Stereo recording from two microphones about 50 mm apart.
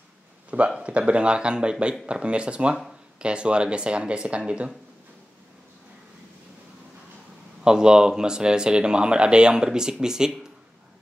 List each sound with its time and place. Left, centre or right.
0.5 s speech: right
7.6 s speech: centre